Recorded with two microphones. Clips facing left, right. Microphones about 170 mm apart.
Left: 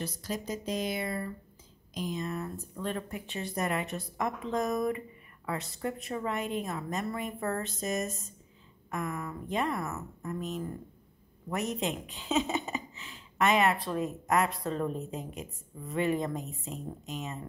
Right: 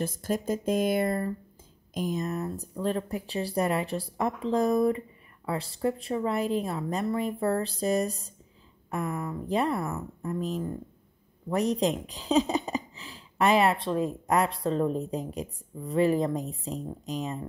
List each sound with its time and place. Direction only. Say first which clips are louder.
0.0 s speech: right 7 dB; 50° right (ahead or behind)